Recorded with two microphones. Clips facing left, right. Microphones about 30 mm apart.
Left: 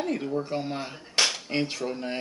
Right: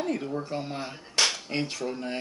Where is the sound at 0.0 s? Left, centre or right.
Centre.